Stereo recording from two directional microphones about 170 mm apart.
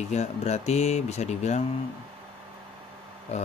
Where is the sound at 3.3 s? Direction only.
40° left (ahead or behind).